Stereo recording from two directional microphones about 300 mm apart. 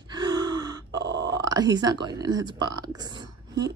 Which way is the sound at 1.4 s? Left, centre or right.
Centre.